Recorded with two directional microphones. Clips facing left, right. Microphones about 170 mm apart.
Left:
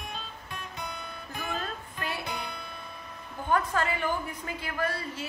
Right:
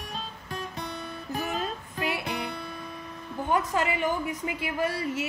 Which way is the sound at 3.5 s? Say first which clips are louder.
Right 1 dB; 15° right (ahead or behind).